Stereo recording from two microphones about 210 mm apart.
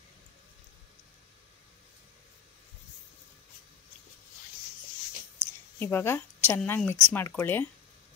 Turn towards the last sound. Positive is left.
turn(degrees=10)  # may be behind; listen again after turning